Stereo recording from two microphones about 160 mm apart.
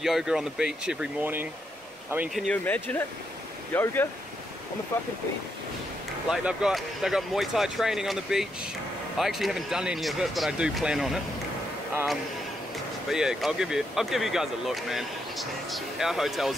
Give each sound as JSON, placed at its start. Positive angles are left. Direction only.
{"t": 0.0, "sound": "speech", "side_deg": -5}
{"t": 2.3, "sound": "speech", "side_deg": 5}
{"t": 6.3, "sound": "speech", "side_deg": -5}
{"t": 13.1, "sound": "speech", "side_deg": -5}